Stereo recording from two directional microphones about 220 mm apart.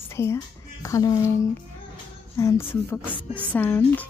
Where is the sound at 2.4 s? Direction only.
10° left (ahead or behind).